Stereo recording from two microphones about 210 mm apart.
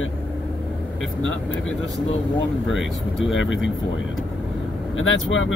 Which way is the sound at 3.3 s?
65° left (ahead or behind).